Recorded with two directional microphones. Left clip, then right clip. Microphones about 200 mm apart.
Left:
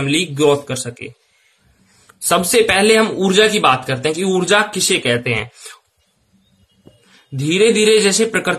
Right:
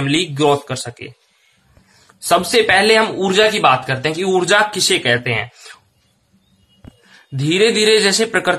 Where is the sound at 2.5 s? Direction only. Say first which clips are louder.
Even; 20° left (ahead or behind).